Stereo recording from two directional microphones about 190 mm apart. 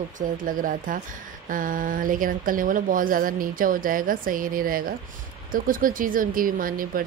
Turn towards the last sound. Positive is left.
turn(degrees=-45)  # may be behind; listen again after turning